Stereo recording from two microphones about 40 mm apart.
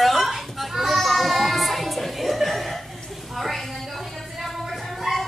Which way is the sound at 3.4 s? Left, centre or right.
Centre.